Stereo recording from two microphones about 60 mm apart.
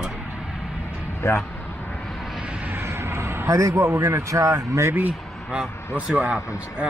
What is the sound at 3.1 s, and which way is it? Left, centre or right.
Vehicle, right.